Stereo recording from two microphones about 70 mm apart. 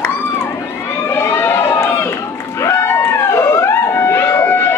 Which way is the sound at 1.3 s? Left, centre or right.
Left.